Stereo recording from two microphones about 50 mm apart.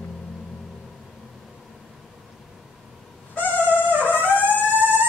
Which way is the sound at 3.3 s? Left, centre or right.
Left.